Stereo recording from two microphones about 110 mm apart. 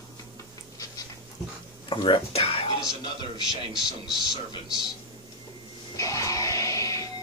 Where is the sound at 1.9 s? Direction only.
50° left (ahead or behind).